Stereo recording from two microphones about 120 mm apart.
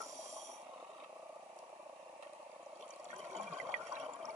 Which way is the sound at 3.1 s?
70° right (ahead or behind).